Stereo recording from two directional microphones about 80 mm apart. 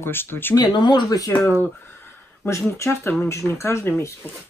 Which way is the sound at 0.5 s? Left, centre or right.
Left.